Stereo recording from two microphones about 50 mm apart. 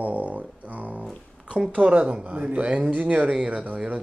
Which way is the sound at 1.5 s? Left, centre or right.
Right.